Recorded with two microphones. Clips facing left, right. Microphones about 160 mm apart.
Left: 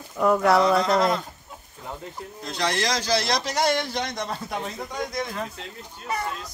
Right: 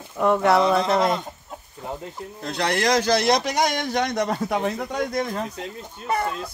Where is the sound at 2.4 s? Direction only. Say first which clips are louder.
Right 3 dB; 60° right (ahead or behind).